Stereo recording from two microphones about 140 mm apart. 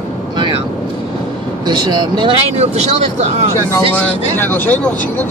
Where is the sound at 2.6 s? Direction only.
50° right (ahead or behind).